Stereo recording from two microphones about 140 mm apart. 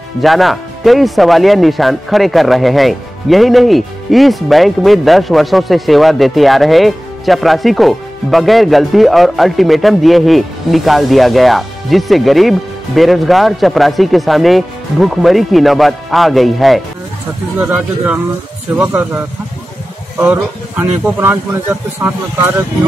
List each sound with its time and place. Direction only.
0.2 s speech: centre (ahead or behind)